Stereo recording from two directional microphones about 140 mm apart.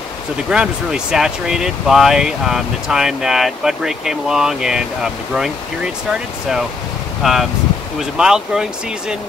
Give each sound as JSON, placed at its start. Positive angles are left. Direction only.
{"t": 0.5, "sound": "speech", "side_deg": -5}
{"t": 7.2, "sound": "speech", "side_deg": 0}